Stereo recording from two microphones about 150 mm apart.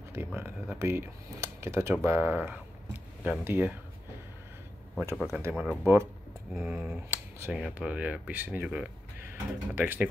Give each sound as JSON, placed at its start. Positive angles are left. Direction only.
{"t": 0.1, "sound": "speech", "side_deg": -15}
{"t": 5.1, "sound": "speech", "side_deg": 0}
{"t": 5.4, "sound": "speech", "side_deg": -10}